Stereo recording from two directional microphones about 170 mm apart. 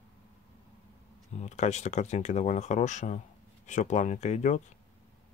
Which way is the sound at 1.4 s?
40° left (ahead or behind).